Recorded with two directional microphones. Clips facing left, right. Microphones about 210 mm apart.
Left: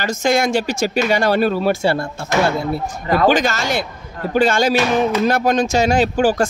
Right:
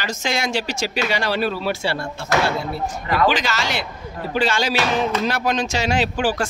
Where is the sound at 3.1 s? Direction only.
45° left (ahead or behind).